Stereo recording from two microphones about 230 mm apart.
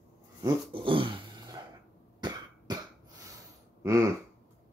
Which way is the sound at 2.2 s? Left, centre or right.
Centre.